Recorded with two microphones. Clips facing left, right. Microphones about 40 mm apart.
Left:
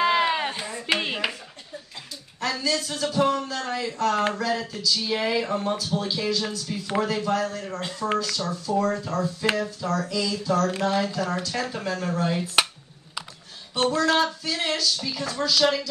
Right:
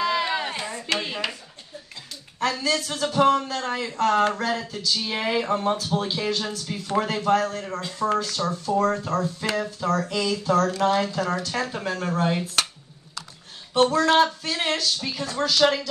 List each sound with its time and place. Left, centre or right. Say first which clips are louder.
0.0 s a sound: left 2 dB; left
1.0 s dishes: left 2 dB; left
2.4 s speech: right 2 dB; right
4.4 s a sound: even; right
5.1 s speech: right 1 dB; right
5.8 s speech: right 1 dB; right
8.0 s speech: right 3 dB; centre
8.4 s speech: right 2 dB; right
11.6 s speech: right 1 dB; right
12.6 s a sound: left 6 dB; left
13.7 s speech: right 3 dB; right